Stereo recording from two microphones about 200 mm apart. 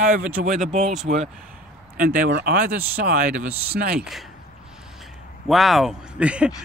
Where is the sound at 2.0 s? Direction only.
45° right (ahead or behind).